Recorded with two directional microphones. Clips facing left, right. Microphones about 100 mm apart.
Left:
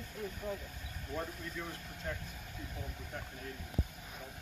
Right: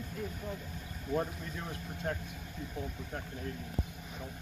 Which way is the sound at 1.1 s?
Centre (ahead or behind).